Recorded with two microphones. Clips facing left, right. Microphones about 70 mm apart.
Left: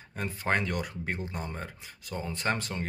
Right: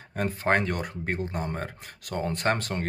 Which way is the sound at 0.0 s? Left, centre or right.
Right.